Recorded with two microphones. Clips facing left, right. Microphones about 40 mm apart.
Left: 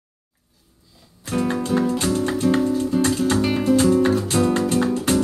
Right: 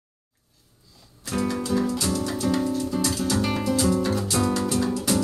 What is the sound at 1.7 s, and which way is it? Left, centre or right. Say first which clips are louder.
Music: left 5 dB; left.